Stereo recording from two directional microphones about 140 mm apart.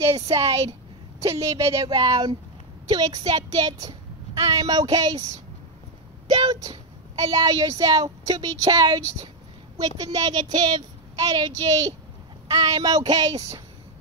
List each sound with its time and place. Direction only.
0.0 s speech: 20° right (ahead or behind)
6.3 s speech: 30° right (ahead or behind)